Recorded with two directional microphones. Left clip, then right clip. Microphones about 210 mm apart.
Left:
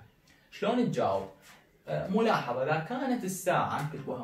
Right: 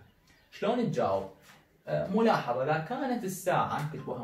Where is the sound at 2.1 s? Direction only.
20° left (ahead or behind).